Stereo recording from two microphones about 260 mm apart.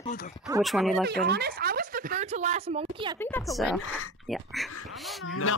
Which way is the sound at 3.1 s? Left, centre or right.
Centre.